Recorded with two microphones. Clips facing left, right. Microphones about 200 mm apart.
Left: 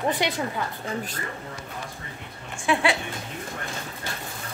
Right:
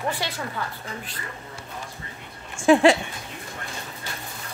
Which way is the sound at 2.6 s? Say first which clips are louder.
Right 8 dB; 45° right (ahead or behind).